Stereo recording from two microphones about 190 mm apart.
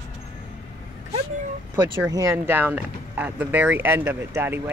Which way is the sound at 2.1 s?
15° right (ahead or behind).